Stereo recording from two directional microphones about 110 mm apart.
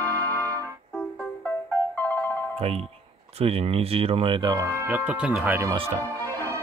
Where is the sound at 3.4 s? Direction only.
60° right (ahead or behind).